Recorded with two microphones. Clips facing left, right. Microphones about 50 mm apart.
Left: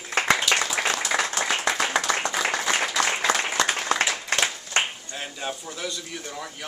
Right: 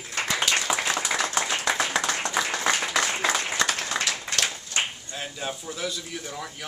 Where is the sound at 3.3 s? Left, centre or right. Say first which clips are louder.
Left 3 dB; left.